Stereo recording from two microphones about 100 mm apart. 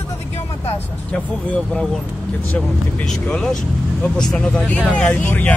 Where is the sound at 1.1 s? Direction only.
10° left (ahead or behind).